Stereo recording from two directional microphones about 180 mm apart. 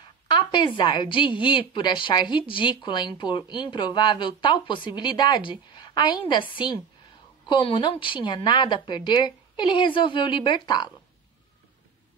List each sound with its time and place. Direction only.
0.3 s speech: 25° left (ahead or behind)